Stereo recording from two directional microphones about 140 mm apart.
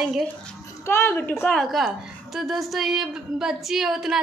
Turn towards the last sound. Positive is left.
turn(degrees=0)  # may be behind; listen again after turning